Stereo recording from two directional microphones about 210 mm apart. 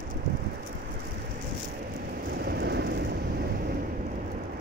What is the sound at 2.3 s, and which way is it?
Vehicle, 50° right (ahead or behind).